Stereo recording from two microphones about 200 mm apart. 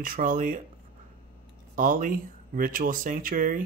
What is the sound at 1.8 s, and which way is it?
Speech, 40° right (ahead or behind).